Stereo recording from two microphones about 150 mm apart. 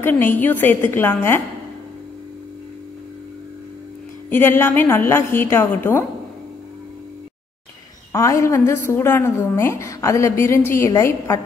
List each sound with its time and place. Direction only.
0.0 s a woman's voice: 15° left (ahead or behind)
4.3 s a woman's voice: 15° left (ahead or behind)
8.1 s a woman's voice: 20° left (ahead or behind)